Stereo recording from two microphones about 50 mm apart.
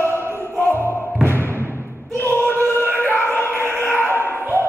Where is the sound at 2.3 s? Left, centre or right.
Left.